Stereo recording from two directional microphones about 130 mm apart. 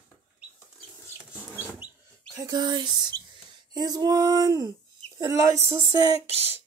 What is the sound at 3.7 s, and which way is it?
Speech, 30° right (ahead or behind).